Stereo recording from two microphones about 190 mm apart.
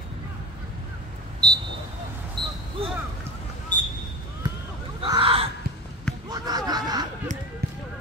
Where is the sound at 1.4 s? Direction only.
20° right (ahead or behind).